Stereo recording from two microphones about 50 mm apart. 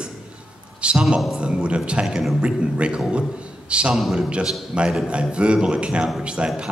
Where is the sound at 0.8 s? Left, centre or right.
Right.